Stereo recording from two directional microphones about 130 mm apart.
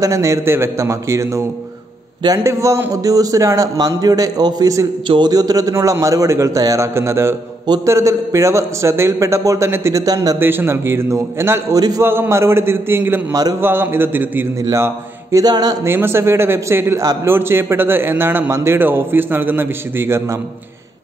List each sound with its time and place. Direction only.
0.0 s a man's voice: 25° right (ahead or behind)
7.6 s mantra: 35° right (ahead or behind)
7.9 s a man's voice: 25° right (ahead or behind)
10.4 s a man's voice: 15° right (ahead or behind)
13.3 s a man's voice: 30° right (ahead or behind)
13.6 s a man's voice: 15° right (ahead or behind)
15.3 s mantra: 30° right (ahead or behind)
15.9 s a man's voice: 20° right (ahead or behind)